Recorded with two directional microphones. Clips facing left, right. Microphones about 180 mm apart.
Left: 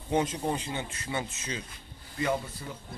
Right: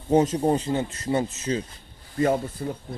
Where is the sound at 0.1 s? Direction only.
40° right (ahead or behind).